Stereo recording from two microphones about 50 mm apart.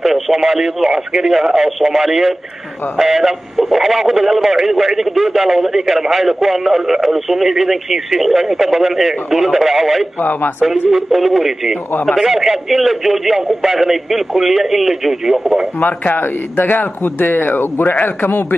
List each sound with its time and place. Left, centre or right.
0.0 s a man's voice: centre
10.1 s a man's voice: left
10.9 s a man's voice: centre
15.8 s a man's voice: left